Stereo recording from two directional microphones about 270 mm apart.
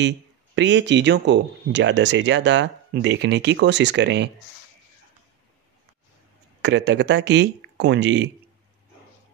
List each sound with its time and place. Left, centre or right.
0.6 s speech: right
6.6 s speech: right